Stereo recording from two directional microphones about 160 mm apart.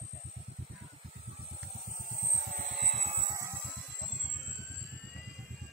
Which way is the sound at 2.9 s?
40° right (ahead or behind).